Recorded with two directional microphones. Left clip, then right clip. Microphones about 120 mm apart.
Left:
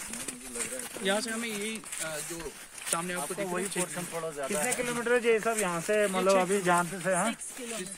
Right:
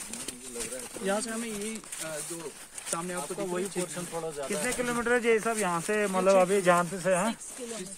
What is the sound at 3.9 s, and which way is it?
Speech, 45° right (ahead or behind).